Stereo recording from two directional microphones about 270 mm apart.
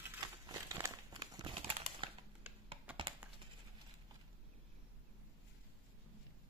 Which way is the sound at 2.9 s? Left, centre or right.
Centre.